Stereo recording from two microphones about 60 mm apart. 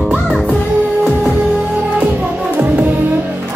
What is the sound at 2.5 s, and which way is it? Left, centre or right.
Music, right.